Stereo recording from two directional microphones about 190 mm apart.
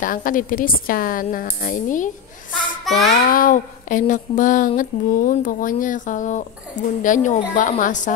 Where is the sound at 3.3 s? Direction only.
45° left (ahead or behind).